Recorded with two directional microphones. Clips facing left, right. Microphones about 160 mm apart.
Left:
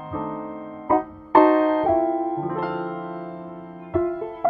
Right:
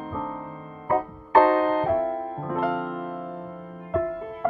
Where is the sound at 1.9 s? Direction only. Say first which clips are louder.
Left 4 dB; 40° left (ahead or behind).